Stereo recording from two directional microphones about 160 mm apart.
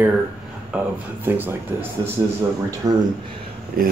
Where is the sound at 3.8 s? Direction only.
65° right (ahead or behind).